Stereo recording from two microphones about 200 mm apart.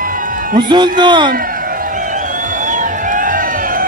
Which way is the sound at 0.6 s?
20° right (ahead or behind).